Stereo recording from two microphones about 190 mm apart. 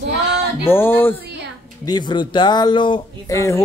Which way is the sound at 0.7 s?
10° left (ahead or behind).